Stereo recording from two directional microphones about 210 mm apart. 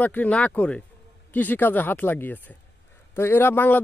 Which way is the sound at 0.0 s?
10° left (ahead or behind).